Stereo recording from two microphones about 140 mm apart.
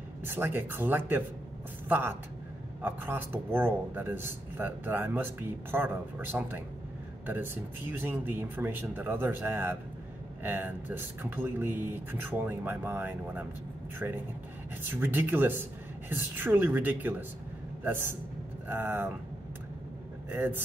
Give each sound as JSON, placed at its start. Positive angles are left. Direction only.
{"t": 0.2, "sound": "speech", "side_deg": -15}
{"t": 20.2, "sound": "speech", "side_deg": -15}